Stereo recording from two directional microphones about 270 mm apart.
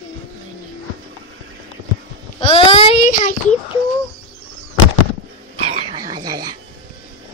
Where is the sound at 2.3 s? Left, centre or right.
Centre.